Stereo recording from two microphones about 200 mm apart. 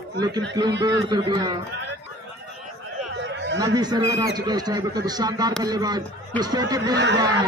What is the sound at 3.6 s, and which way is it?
A man's voice, 20° right (ahead or behind).